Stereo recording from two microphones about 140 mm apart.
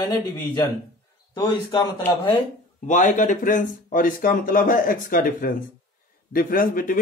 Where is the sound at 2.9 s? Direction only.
65° left (ahead or behind); by 7.0 s 85° left.